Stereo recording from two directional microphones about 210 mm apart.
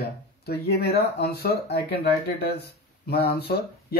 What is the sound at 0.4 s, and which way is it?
Speech, 50° left (ahead or behind).